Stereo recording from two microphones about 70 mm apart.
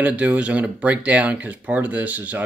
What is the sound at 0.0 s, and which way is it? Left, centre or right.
Speech, right.